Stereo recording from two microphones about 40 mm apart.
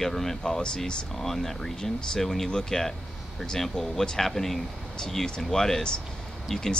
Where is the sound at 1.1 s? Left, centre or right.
Centre.